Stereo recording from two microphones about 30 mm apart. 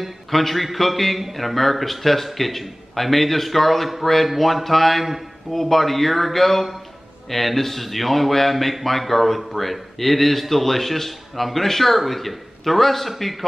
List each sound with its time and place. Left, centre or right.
0.3 s speech: centre